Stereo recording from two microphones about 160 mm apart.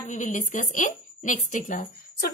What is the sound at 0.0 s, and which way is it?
A woman's voice, 55° left (ahead or behind).